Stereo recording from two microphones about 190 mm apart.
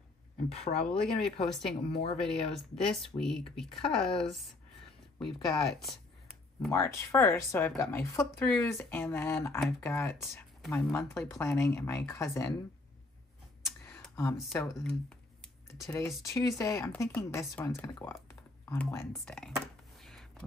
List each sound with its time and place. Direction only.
0.5 s speech: 30° left (ahead or behind)
0.8 s speech: 5° left (ahead or behind)
1.9 s speech: 30° left (ahead or behind)
2.1 s speech: 5° left (ahead or behind)
6.7 s speech: 15° left (ahead or behind)
11.0 s speech: 15° left (ahead or behind)
13.6 s a sound: 15° left (ahead or behind)
14.1 s speech: 15° left (ahead or behind)
14.8 s a sound: 5° left (ahead or behind)
16.3 s speech: 15° left (ahead or behind)
20.0 s a sound: centre (ahead or behind)